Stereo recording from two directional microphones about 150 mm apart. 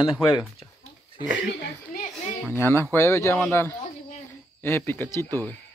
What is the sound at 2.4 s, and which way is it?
Speech, 15° left (ahead or behind).